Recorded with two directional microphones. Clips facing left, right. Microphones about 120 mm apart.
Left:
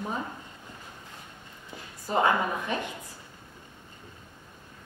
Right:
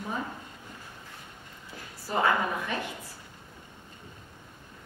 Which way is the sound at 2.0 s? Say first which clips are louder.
Left 2 dB; 20° left (ahead or behind).